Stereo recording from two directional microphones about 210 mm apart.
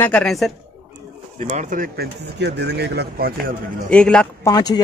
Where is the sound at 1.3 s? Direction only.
35° right (ahead or behind); by 3.3 s 50° right (ahead or behind).